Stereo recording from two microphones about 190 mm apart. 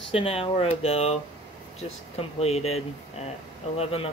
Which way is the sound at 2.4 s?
35° left (ahead or behind).